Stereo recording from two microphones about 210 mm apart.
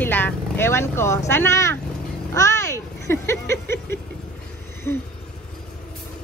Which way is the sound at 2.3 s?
15° left (ahead or behind).